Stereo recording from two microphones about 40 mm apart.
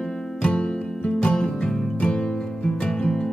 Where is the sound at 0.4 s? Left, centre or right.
Left.